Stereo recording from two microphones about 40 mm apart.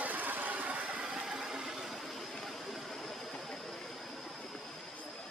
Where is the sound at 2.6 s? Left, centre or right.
Centre.